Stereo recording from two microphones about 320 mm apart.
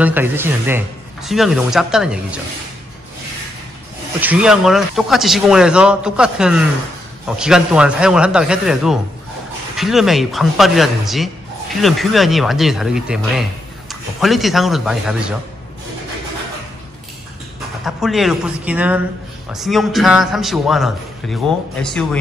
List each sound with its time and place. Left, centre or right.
0.0 s speech: centre
4.2 s speech: centre
17.8 s speech: centre